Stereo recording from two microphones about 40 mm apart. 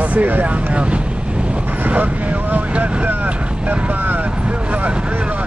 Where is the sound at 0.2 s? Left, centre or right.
Right.